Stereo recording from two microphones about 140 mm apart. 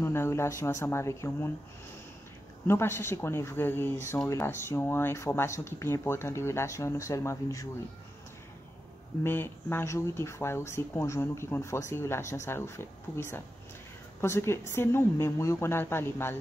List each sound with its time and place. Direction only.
0.0 s speech: 15° left (ahead or behind)
2.6 s speech: 15° left (ahead or behind)
9.2 s speech: 15° left (ahead or behind)